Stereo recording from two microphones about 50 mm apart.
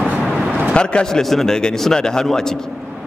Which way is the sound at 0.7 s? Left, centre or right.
Centre.